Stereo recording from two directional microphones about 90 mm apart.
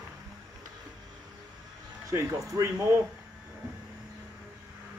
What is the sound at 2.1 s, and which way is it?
Speech, 30° right (ahead or behind).